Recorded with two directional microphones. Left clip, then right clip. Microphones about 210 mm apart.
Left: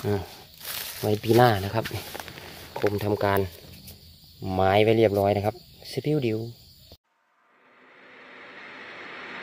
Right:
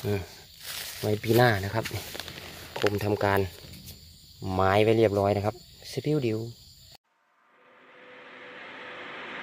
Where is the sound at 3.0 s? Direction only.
Centre (ahead or behind).